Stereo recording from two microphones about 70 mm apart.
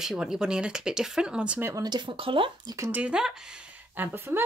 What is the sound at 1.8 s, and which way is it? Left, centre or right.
Speech, right.